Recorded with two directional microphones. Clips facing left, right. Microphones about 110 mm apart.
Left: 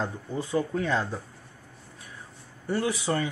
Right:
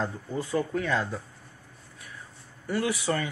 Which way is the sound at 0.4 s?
20° left (ahead or behind).